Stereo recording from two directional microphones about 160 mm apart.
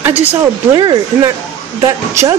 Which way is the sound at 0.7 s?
30° right (ahead or behind).